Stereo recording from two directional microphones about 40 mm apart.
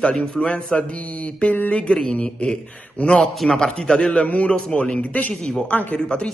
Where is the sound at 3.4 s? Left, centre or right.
Centre.